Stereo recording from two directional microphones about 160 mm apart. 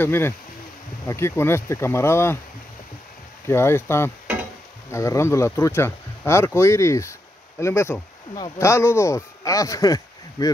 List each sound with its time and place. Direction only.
0.0 s speech: 15° left (ahead or behind)
3.4 s speech: 15° left (ahead or behind)